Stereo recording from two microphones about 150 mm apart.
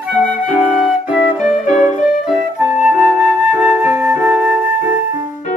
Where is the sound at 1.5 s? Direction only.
55° left (ahead or behind).